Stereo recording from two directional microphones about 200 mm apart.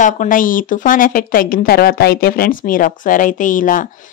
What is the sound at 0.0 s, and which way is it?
Speech, 40° left (ahead or behind).